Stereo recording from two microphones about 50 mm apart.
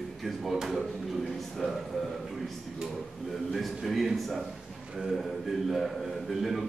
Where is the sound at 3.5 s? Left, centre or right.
Centre.